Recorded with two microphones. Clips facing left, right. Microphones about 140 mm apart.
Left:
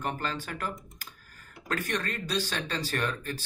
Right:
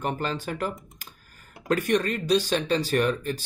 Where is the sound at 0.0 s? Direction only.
20° right (ahead or behind).